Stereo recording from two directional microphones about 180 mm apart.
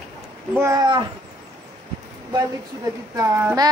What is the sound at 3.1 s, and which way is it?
Speech, 15° right (ahead or behind).